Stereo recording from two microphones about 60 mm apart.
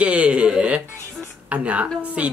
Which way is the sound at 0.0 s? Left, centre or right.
Right.